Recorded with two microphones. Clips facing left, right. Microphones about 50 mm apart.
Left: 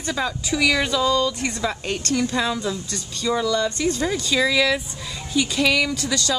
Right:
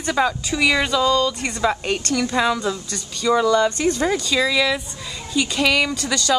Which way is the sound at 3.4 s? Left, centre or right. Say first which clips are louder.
Right 4 dB; right.